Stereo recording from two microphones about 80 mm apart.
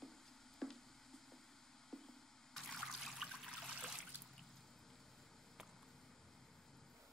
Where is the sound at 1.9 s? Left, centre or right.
Centre.